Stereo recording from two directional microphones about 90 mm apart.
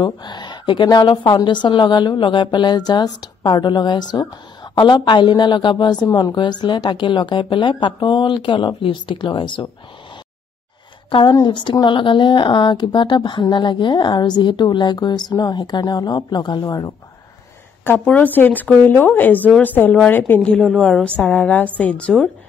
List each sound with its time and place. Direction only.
0.0 s a woman's voice: 55° left (ahead or behind)
11.1 s a woman's voice: 65° left (ahead or behind)
11.3 s a woman's voice: 55° left (ahead or behind)
16.6 s speech: 40° left (ahead or behind)
17.8 s speech: 20° left (ahead or behind)
20.5 s a woman's voice: 5° left (ahead or behind)
21.0 s a woman's voice: 15° left (ahead or behind)